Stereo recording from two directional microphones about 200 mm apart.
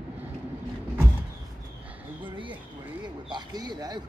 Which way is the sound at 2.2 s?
25° right (ahead or behind).